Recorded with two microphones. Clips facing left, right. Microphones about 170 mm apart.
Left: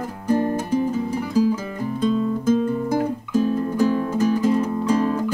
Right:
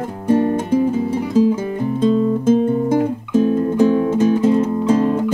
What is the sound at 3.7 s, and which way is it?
Music, 25° right (ahead or behind).